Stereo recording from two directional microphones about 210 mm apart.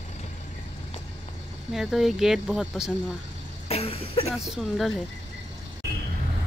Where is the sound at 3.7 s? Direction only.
30° left (ahead or behind).